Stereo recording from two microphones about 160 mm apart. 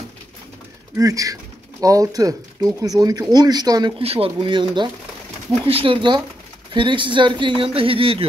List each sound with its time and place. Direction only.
0.9 s speech: 20° right (ahead or behind)
4.0 s speech: 35° right (ahead or behind)